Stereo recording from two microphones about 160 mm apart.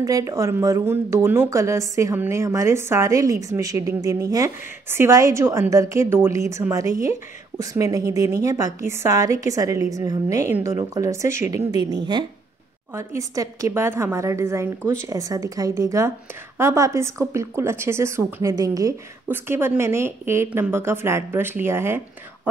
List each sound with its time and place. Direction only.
0.0 s a woman's voice: 20° right (ahead or behind)